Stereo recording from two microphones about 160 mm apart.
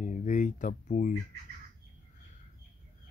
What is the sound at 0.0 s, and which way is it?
Speech, 50° left (ahead or behind).